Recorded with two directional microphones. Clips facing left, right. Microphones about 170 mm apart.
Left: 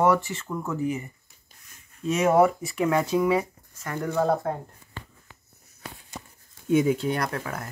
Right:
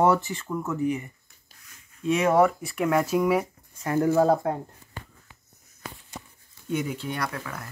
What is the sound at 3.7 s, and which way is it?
Speech, 30° right (ahead or behind).